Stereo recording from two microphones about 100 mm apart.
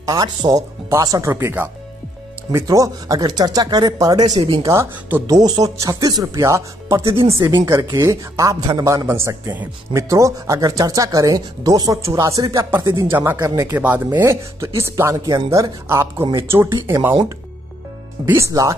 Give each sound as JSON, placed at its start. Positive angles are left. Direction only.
{"t": 0.0, "sound": "speech", "side_deg": -40}
{"t": 1.3, "sound": "speech", "side_deg": -20}
{"t": 2.5, "sound": "speech", "side_deg": -35}
{"t": 7.0, "sound": "speech", "side_deg": -65}
{"t": 7.6, "sound": "speech", "side_deg": -30}
{"t": 13.1, "sound": "speech", "side_deg": -25}
{"t": 15.2, "sound": "speech", "side_deg": -40}
{"t": 18.2, "sound": "speech", "side_deg": -30}